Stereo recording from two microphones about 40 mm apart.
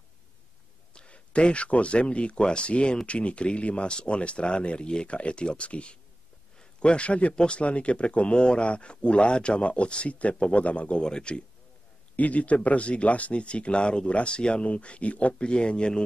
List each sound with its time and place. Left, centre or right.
0.9 s speech: left
11.0 s speech: left
12.2 s speech: left